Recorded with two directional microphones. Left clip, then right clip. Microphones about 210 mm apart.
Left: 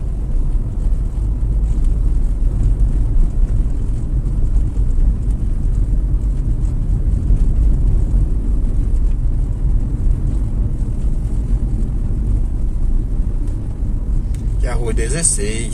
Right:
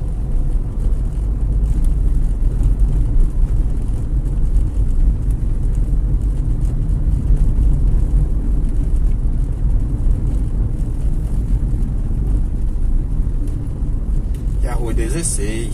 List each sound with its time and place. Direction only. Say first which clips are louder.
14.7 s vehicle: left 2 dB; 25° left (ahead or behind)